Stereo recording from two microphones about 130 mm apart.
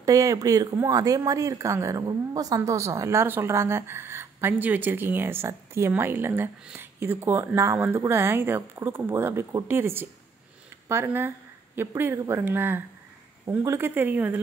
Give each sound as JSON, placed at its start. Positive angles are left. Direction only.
{"t": 0.0, "sound": "speech", "side_deg": -25}